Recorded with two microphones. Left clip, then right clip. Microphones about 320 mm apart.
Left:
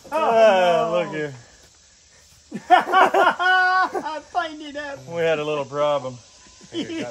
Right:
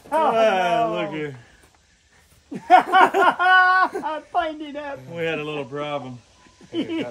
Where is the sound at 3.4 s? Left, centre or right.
Right.